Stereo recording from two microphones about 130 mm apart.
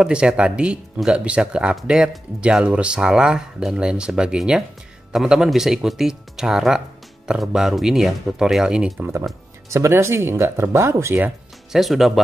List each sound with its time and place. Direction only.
0.0 s speech: 5° right (ahead or behind)
9.0 s speech: 20° right (ahead or behind)
11.7 s speech: centre (ahead or behind)